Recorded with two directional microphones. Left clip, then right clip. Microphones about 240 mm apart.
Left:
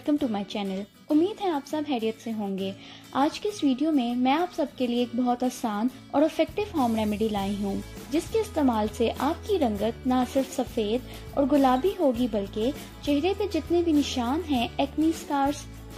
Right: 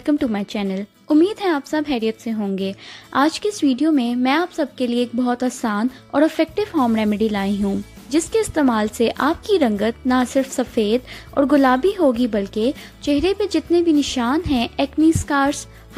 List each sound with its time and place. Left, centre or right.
0.0 s speech: centre